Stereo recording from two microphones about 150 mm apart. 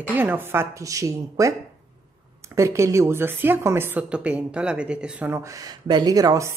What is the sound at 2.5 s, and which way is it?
Speech, 20° right (ahead or behind).